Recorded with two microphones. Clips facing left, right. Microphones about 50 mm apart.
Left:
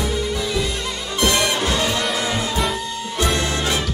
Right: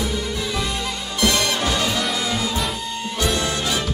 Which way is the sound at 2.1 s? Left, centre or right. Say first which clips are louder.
Left 2 dB; left.